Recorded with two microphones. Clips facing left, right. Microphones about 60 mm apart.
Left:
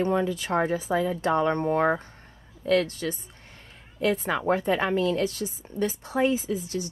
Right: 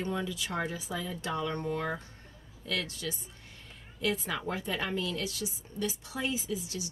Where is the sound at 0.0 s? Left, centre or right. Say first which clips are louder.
Left 9 dB; left.